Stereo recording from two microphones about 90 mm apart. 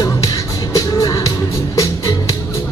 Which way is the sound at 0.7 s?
40° left (ahead or behind).